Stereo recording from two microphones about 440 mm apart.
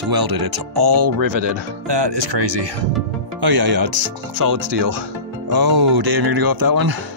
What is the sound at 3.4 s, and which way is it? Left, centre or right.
Speech, right.